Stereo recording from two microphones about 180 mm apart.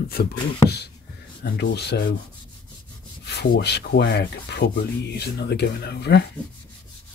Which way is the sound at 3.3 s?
70° left (ahead or behind).